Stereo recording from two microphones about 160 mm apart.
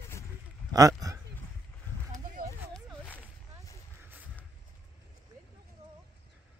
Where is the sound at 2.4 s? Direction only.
65° right (ahead or behind).